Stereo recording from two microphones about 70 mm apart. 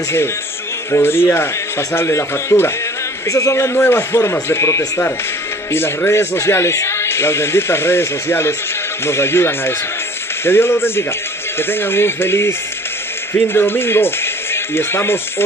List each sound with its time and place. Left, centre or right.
0.9 s speech: left
3.3 s speech: left
3.7 s speech: left